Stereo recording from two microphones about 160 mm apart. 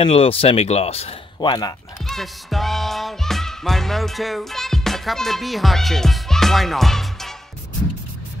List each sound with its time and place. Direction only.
0.0 s speech: 35° left (ahead or behind)
1.4 s speech: 25° left (ahead or behind)
2.0 s music: centre (ahead or behind)